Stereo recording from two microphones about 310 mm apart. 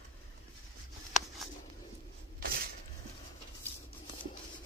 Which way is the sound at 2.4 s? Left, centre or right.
Right.